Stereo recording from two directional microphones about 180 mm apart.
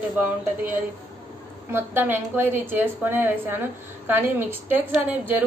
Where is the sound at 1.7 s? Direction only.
10° right (ahead or behind).